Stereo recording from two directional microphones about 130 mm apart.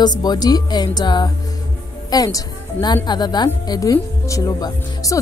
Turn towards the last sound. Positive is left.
turn(degrees=25)  # may be behind; listen again after turning